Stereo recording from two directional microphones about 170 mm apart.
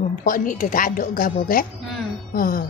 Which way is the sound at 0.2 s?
55° left (ahead or behind).